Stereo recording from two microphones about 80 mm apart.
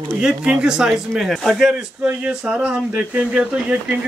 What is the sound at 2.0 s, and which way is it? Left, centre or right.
Speech, centre.